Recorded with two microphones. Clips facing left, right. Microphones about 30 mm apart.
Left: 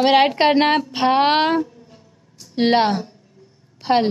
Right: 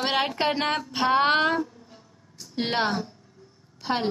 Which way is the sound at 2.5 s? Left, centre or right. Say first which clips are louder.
Left 9 dB; left.